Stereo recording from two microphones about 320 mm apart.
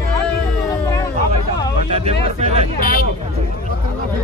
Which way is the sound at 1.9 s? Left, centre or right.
Centre.